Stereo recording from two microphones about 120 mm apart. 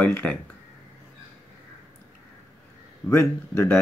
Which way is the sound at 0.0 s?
15° left (ahead or behind).